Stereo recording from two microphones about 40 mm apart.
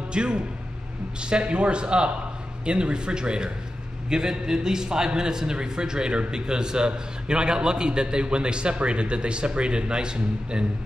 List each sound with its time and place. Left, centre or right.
0.1 s a man's voice: right